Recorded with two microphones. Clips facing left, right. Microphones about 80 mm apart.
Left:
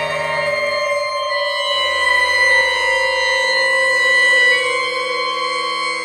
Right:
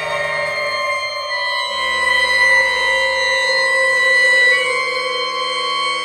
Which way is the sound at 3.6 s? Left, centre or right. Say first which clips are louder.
Even; centre.